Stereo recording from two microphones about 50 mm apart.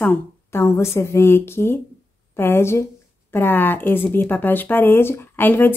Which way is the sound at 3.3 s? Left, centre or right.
Left.